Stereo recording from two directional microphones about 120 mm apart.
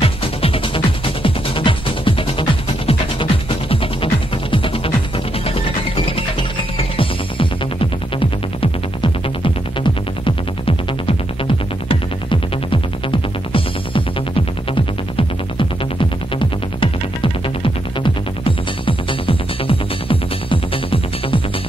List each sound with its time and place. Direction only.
0.0 s music: 50° left (ahead or behind)
9.4 s music: 45° left (ahead or behind)
16.3 s music: 45° left (ahead or behind)